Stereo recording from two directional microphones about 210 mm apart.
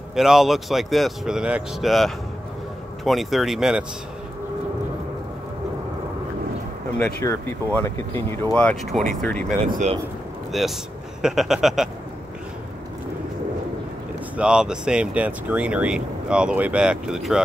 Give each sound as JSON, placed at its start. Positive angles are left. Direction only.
{"t": 0.1, "sound": "speech", "side_deg": 0}
{"t": 7.2, "sound": "speech", "side_deg": 10}
{"t": 9.7, "sound": "speech", "side_deg": -35}
{"t": 10.5, "sound": "speech", "side_deg": 0}
{"t": 14.3, "sound": "speech", "side_deg": -5}